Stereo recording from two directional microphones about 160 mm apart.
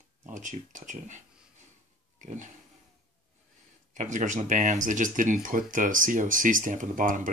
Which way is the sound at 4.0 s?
50° right (ahead or behind).